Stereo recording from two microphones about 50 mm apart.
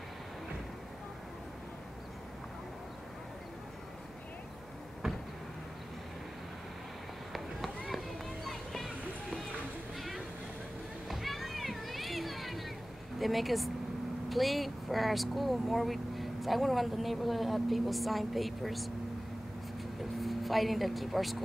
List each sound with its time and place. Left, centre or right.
5.0 s vehicle: centre
7.3 s run: centre
8.5 s music: centre
9.9 s vehicle: centre
11.1 s children playing: centre
13.2 s speech: centre
20.2 s speech: centre